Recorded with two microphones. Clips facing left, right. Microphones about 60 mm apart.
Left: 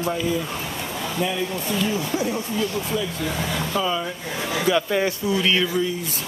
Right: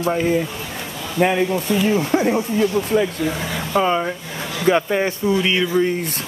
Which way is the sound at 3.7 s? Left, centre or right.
Right.